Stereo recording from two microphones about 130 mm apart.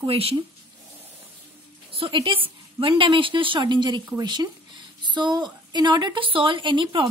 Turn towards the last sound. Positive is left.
turn(degrees=-40)  # may be behind; listen again after turning